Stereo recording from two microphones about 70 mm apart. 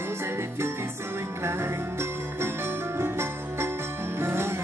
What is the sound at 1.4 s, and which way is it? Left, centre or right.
Jingle bell, right.